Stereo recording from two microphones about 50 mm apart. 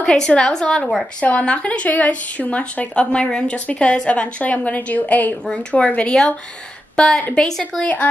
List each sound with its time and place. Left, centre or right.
0.0 s a woman's voice: centre
1.4 s speech: left
7.0 s a woman's voice: centre
7.8 s speech: left